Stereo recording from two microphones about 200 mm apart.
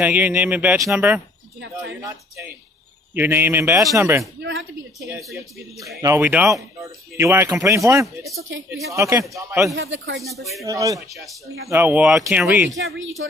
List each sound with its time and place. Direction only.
0.0 s speech: 10° right (ahead or behind)
4.4 s speech: 65° right (ahead or behind)
5.9 s speech: 15° right (ahead or behind)
8.4 s speech: 70° right (ahead or behind)
8.6 s speech: 15° right (ahead or behind)
9.8 s speech: 70° right (ahead or behind)
10.1 s speech: centre (ahead or behind)
10.6 s speech: 15° right (ahead or behind)